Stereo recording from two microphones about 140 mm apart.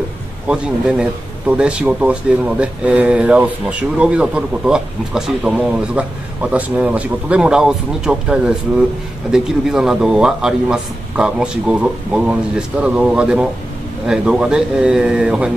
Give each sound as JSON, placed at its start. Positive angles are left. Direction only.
{"t": 0.5, "sound": "a man's voice", "side_deg": -5}